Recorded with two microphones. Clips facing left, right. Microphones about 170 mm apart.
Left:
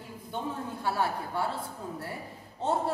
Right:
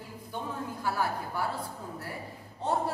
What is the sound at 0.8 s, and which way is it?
Speech, 25° left (ahead or behind).